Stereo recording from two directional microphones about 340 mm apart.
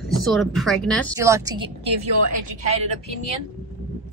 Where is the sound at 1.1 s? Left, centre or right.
Centre.